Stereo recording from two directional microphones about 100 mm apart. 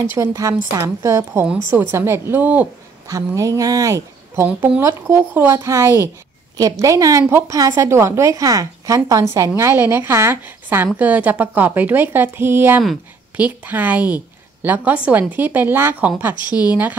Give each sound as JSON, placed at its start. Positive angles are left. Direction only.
{"t": 0.0, "sound": "a woman's voice", "side_deg": -30}
{"t": 3.1, "sound": "a woman's voice", "side_deg": -35}
{"t": 4.5, "sound": "a woman's voice", "side_deg": -15}